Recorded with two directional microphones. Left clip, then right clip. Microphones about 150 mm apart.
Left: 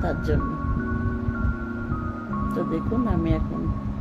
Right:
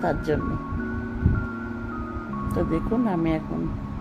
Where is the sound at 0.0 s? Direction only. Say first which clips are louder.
Right 2 dB; 20° right (ahead or behind).